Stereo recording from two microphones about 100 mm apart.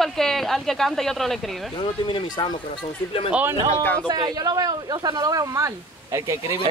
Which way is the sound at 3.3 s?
15° right (ahead or behind).